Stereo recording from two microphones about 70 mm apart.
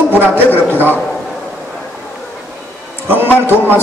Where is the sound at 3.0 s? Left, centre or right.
Right.